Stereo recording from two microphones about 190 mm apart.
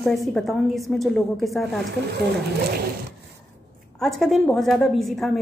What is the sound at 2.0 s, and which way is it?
Speech, 65° right (ahead or behind).